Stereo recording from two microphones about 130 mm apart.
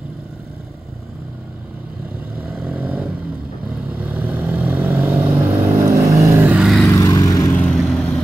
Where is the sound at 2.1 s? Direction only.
5° right (ahead or behind).